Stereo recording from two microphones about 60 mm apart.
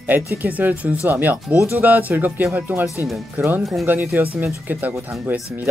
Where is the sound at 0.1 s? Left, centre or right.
Right.